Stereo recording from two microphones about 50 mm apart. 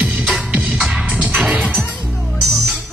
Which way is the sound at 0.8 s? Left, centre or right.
Centre.